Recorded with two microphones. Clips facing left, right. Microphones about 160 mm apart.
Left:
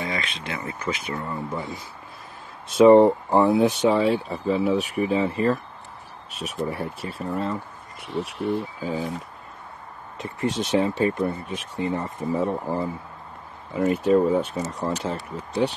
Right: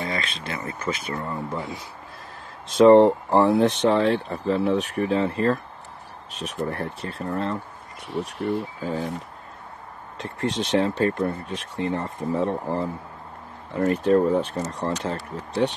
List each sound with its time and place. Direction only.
0.1 s speech: 15° left (ahead or behind)
1.3 s speech: 5° left (ahead or behind)
2.8 s speech: 5° left (ahead or behind)
10.1 s speech: 75° right (ahead or behind)
10.6 s speech: 5° left (ahead or behind)